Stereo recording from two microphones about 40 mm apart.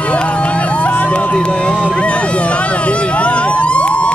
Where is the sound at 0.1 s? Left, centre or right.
Left.